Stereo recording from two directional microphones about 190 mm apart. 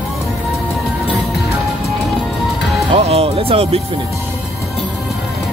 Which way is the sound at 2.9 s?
30° right (ahead or behind).